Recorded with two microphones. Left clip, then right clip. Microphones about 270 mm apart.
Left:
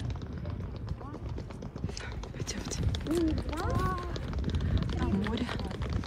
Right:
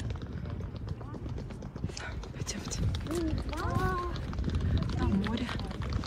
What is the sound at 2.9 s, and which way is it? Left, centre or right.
Boat, left.